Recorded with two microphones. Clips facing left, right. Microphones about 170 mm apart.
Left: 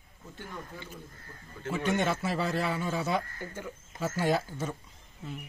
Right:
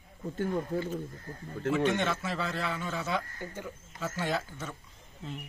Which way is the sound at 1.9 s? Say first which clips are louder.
Left 2 dB; 10° left (ahead or behind).